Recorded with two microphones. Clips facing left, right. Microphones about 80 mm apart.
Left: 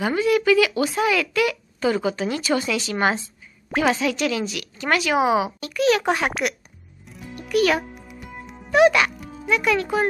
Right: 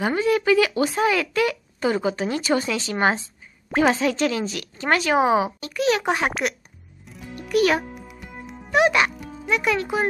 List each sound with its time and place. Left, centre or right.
0.0 s a woman's voice: right
7.1 s music: centre
7.3 s music: right
7.9 s music: centre
8.7 s speech: right